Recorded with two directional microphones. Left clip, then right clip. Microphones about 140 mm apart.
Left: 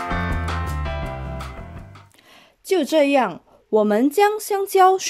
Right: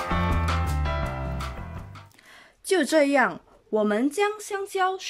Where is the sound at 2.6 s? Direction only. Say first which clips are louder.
Left 3 dB; 15° left (ahead or behind).